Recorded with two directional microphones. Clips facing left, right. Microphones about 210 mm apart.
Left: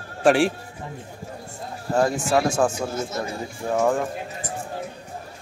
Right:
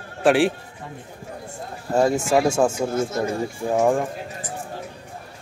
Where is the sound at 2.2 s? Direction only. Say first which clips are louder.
Right 2 dB; 10° right (ahead or behind).